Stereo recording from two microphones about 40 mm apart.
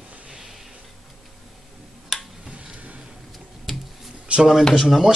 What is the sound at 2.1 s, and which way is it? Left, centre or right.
Tick-tock, centre.